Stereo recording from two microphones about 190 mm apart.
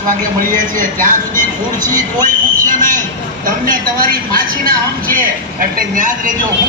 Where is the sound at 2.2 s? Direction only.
45° right (ahead or behind).